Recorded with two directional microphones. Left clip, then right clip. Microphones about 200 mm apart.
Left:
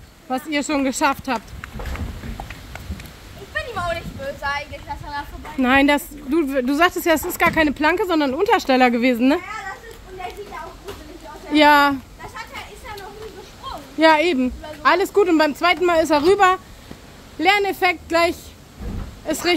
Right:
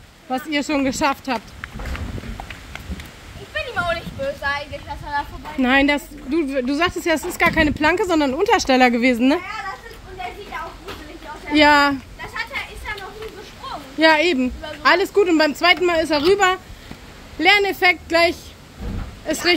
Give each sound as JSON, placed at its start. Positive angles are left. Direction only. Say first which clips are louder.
{"t": 0.3, "sound": "a woman's voice", "louder": "even", "side_deg": 0}
{"t": 3.5, "sound": "a woman's voice", "louder": "right 2 dB", "side_deg": -10}
{"t": 11.5, "sound": "a woman's voice", "louder": "even", "side_deg": 0}
{"t": 13.7, "sound": "a sound", "louder": "even", "side_deg": 5}
{"t": 15.0, "sound": "a woman's voice", "louder": "even", "side_deg": 5}